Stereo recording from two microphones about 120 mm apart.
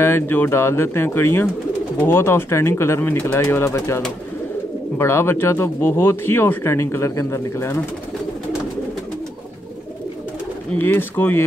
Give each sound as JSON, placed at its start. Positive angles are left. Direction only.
{"t": 0.0, "sound": "speech", "side_deg": 20}
{"t": 10.7, "sound": "speech", "side_deg": 15}